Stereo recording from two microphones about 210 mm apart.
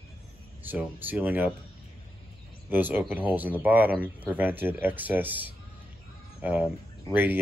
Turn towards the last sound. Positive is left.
turn(degrees=-10)  # may be behind; listen again after turning